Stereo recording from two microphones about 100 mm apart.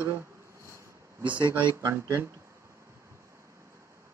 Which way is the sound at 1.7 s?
30° right (ahead or behind).